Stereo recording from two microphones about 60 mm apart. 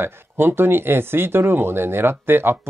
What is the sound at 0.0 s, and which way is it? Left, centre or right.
Speech, right.